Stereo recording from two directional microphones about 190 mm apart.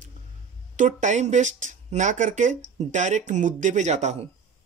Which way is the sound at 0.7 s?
40° right (ahead or behind).